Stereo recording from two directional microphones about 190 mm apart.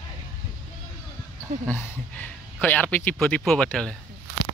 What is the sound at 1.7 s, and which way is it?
Speech, 10° left (ahead or behind).